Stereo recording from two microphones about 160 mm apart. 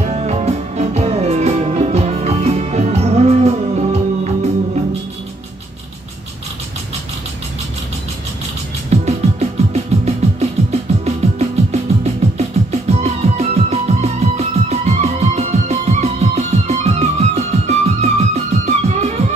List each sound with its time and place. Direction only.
0.0 s music: 45° right (ahead or behind)
8.9 s music: 45° right (ahead or behind)